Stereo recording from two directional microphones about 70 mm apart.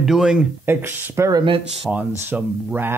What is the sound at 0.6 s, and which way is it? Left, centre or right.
Speech, right.